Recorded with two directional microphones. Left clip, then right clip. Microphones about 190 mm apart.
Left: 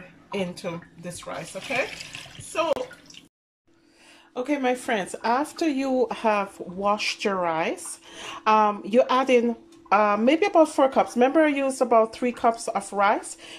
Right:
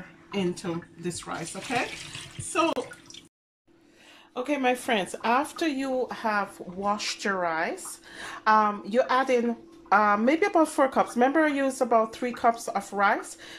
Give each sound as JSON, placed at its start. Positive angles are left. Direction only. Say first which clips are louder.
{"t": 0.3, "sound": "speech", "louder": "even", "side_deg": 15}
{"t": 4.3, "sound": "speech", "louder": "left 1 dB", "side_deg": 0}